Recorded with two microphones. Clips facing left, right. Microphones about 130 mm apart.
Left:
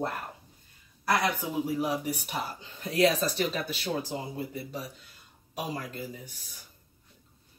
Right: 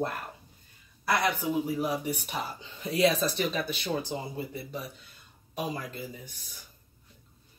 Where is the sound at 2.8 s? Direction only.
5° right (ahead or behind).